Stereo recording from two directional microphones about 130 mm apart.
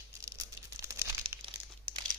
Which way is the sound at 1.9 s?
45° right (ahead or behind).